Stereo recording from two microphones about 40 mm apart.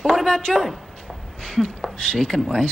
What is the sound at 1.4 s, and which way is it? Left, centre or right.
Speech, centre.